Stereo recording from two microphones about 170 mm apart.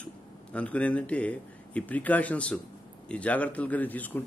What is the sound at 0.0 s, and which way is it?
A man's voice, 5° left (ahead or behind).